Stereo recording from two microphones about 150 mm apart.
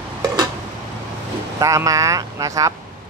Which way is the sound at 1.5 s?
20° right (ahead or behind).